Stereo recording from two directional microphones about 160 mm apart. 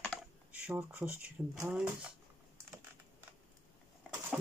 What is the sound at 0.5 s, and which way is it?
Speech, 10° right (ahead or behind).